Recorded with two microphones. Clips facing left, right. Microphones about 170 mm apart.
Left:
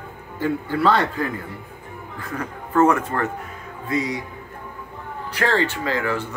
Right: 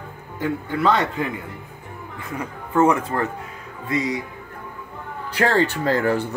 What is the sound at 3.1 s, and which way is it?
Speech, 25° right (ahead or behind).